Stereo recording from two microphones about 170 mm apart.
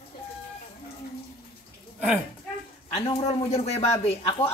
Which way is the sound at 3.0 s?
35° left (ahead or behind).